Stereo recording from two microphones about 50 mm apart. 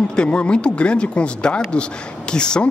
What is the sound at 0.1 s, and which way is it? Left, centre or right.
A man's voice, left.